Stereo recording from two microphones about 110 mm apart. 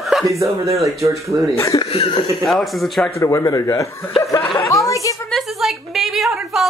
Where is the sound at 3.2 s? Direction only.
30° left (ahead or behind).